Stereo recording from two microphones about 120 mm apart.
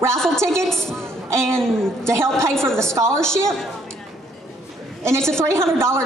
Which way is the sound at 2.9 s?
25° right (ahead or behind).